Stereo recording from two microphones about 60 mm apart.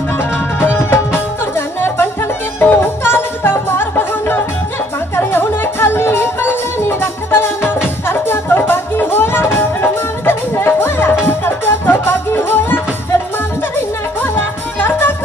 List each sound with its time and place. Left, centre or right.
0.7 s music: left
14.8 s music: left